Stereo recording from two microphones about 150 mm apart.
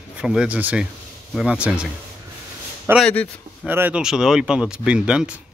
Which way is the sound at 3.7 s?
10° right (ahead or behind).